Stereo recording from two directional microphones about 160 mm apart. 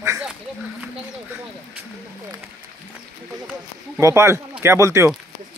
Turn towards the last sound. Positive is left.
turn(degrees=-20)  # may be behind; listen again after turning